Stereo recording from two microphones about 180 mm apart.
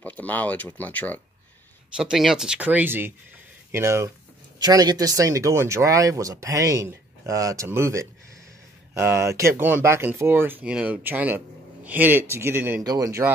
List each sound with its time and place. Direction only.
0.0 s speech: 10° left (ahead or behind)
2.0 s speech: 5° right (ahead or behind)